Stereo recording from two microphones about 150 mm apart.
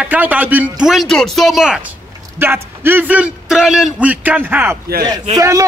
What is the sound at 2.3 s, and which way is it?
Speech, 15° right (ahead or behind).